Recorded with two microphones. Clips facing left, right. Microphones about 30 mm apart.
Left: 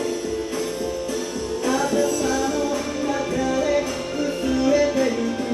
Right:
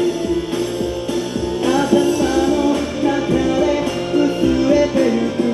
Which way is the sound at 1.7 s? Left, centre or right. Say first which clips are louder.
Right 6 dB; right.